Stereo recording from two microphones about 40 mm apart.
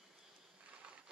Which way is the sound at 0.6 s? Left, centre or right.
Right.